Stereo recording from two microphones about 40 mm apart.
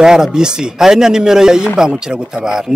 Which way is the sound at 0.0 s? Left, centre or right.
Centre.